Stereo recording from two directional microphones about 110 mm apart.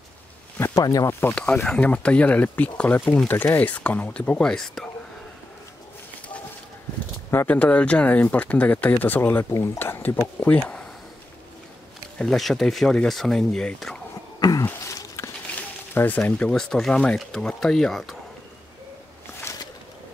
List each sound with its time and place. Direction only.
0.7 s speech: 30° left (ahead or behind)
1.3 s speech: 10° left (ahead or behind)
7.4 s speech: 10° left (ahead or behind)
12.2 s speech: centre (ahead or behind)
14.4 s throat clearing: 30° left (ahead or behind)
14.7 s a sound: 25° left (ahead or behind)
16.2 s speech: 10° left (ahead or behind)